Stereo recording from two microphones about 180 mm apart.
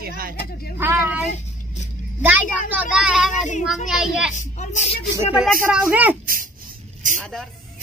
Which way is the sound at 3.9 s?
5° right (ahead or behind).